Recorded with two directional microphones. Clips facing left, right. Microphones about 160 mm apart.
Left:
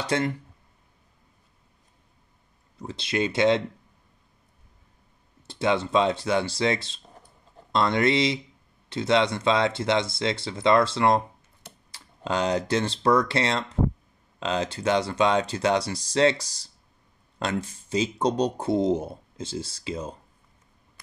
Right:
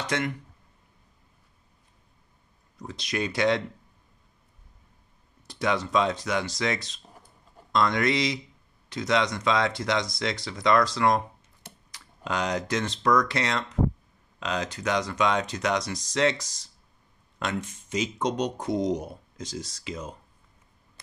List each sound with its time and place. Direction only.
0.0 s speech: 30° left (ahead or behind)
2.8 s speech: 25° left (ahead or behind)
5.5 s speech: 25° left (ahead or behind)